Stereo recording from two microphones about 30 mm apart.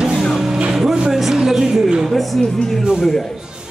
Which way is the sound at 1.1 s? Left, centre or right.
Centre.